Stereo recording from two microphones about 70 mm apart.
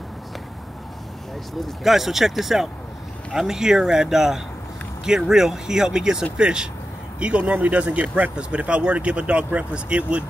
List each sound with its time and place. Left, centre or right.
1.6 s speech: centre